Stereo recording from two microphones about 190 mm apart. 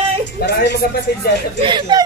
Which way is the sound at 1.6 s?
25° right (ahead or behind).